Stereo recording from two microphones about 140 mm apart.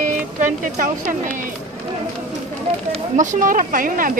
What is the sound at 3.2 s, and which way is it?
Speech, 65° right (ahead or behind).